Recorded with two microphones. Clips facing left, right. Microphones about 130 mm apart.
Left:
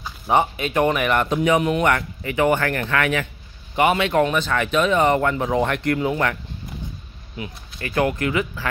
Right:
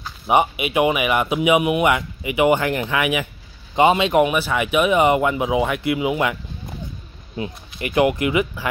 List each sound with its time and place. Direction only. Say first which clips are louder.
0.3 s speech: right 2 dB; 15° right (ahead or behind)
7.3 s speech: right 5 dB; 25° right (ahead or behind)
7.9 s speech: right 3 dB; 15° right (ahead or behind)